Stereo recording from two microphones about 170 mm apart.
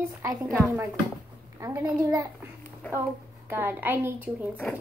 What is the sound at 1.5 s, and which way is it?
Speech, 20° right (ahead or behind).